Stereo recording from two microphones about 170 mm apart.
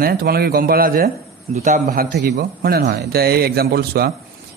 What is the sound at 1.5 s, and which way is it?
A man's voice, 50° right (ahead or behind).